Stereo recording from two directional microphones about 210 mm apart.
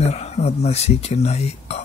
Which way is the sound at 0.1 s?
30° left (ahead or behind).